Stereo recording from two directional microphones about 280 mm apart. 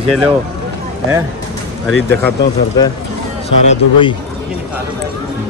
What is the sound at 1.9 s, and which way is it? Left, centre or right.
Speech, centre.